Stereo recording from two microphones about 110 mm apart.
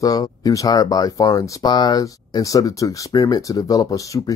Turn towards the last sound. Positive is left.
turn(degrees=30)  # may be behind; listen again after turning